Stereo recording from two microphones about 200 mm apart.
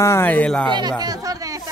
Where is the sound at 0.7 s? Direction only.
20° right (ahead or behind).